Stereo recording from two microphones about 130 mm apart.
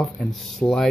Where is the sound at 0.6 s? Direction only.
20° left (ahead or behind).